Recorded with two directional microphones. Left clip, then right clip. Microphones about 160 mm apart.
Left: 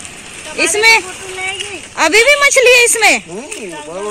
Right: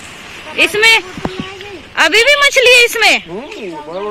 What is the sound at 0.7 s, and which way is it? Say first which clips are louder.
Speech: left 1 dB; 15° left (ahead or behind).